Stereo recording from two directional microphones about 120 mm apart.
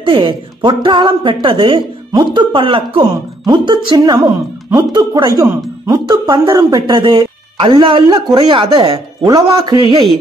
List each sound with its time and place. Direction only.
0.0 s a woman's voice: 45° right (ahead or behind)